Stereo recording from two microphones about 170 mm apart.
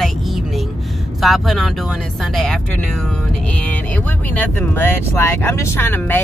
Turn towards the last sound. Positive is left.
turn(degrees=10)  # may be behind; listen again after turning